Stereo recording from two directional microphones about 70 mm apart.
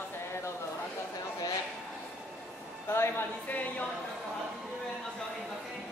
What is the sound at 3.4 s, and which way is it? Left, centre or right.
Speech, left.